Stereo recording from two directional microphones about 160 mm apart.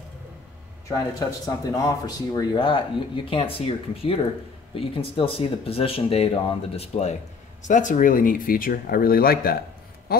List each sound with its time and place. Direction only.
0.8 s speech: 20° left (ahead or behind); by 7.2 s 40° left (ahead or behind)
7.6 s speech: 50° left (ahead or behind); by 9.6 s 70° left (ahead or behind)